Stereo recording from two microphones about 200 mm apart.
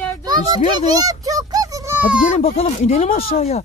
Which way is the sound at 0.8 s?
20° right (ahead or behind).